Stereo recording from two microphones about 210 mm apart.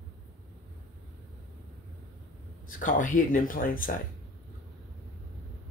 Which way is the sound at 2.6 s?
40° left (ahead or behind).